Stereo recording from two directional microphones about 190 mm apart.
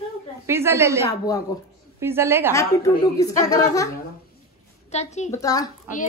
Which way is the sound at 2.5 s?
15° left (ahead or behind).